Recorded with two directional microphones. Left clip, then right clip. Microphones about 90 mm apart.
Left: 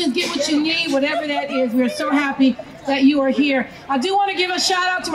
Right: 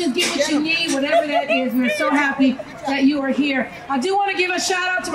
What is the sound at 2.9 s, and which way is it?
A woman's voice, 15° left (ahead or behind).